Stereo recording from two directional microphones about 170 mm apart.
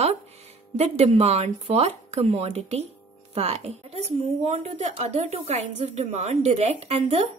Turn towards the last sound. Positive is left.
turn(degrees=-40)  # may be behind; listen again after turning